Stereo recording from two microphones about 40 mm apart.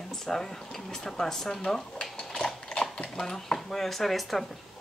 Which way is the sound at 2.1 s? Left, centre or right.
Left.